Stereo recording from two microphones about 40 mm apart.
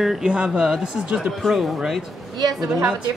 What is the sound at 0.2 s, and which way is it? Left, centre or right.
Speech, right.